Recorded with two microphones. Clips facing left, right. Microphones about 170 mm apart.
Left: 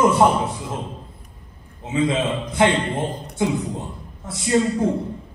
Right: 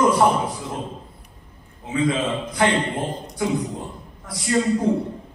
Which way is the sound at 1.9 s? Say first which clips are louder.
Left 1 dB; 25° left (ahead or behind).